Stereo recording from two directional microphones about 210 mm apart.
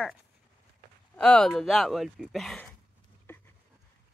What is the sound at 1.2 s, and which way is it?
Speech, 5° left (ahead or behind).